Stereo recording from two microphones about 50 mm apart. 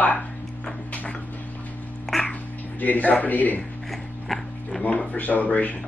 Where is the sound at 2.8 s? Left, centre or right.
Left.